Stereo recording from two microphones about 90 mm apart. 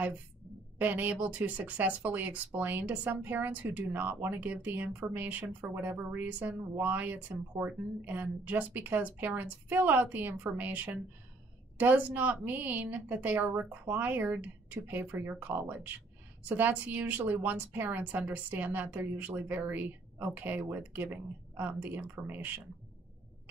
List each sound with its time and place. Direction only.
0.7 s speech: 20° right (ahead or behind)